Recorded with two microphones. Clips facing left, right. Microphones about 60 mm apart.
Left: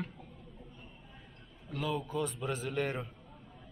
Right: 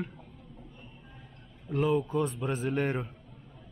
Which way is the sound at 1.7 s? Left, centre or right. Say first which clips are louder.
Right 8 dB; right.